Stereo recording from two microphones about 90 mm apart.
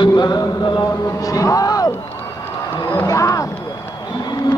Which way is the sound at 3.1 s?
35° left (ahead or behind).